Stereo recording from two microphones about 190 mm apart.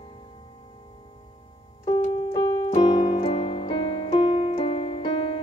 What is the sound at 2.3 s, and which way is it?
Keyboard, 25° left (ahead or behind).